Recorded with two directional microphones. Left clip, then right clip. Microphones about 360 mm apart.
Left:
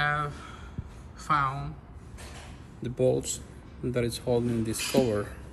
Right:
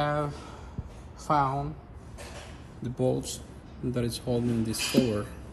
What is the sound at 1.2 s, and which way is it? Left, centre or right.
Speech, centre.